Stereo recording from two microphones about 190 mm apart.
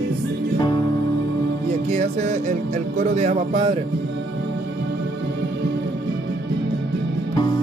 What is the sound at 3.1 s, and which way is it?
Speech, 30° right (ahead or behind).